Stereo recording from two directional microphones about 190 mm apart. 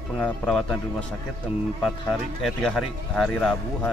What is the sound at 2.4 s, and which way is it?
Speech, centre (ahead or behind).